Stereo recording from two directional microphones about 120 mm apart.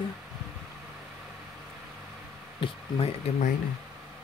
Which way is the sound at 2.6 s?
50° left (ahead or behind).